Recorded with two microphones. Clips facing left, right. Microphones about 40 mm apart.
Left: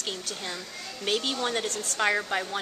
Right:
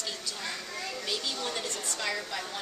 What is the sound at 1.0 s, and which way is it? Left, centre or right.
Speech, left.